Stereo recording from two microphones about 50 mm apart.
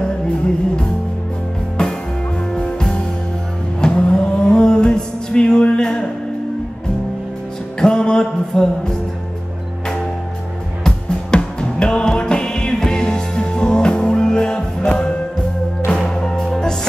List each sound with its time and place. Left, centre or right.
1.8 s music: centre
3.8 s a sound: centre
7.8 s music: centre
10.8 s music: centre
16.1 s music: centre